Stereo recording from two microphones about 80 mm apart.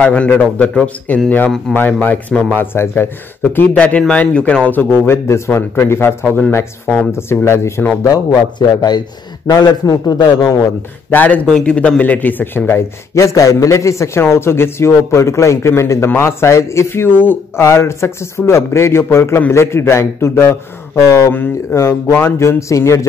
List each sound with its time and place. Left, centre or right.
0.0 s a man's voice: centre; by 7.9 s left
8.1 s a man's voice: left
11.1 s speech: left
11.4 s a man's voice: centre; by 17.4 s left
17.6 s a man's voice: left